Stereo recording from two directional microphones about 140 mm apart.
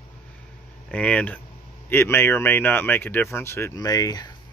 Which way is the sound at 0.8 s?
10° left (ahead or behind).